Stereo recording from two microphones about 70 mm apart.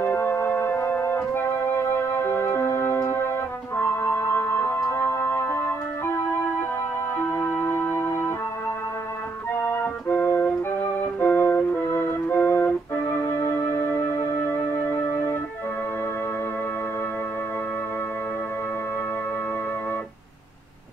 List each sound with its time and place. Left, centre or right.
0.0 s organ: left
7.5 s music: left
9.6 s music: left